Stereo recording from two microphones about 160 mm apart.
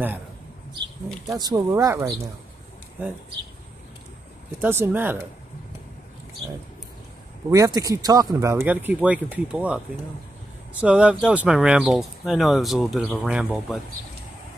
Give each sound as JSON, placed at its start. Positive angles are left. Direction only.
{"t": 1.3, "sound": "speech", "side_deg": -25}
{"t": 4.6, "sound": "speech", "side_deg": -15}
{"t": 7.5, "sound": "speech", "side_deg": -20}